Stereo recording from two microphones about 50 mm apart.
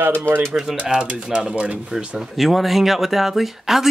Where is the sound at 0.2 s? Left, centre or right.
Right.